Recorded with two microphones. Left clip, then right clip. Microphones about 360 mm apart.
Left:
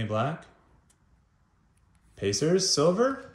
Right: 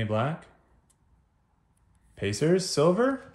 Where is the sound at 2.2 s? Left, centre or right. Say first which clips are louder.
Even; centre.